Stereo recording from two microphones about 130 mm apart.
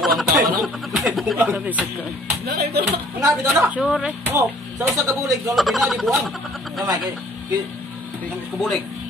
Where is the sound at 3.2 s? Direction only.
25° right (ahead or behind).